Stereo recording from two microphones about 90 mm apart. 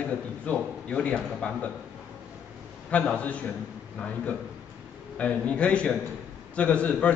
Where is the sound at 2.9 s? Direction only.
15° left (ahead or behind).